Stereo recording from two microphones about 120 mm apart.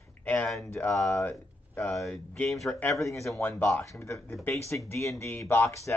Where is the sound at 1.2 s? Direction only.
20° left (ahead or behind).